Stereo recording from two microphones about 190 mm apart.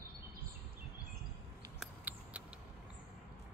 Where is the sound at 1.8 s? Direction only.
5° right (ahead or behind).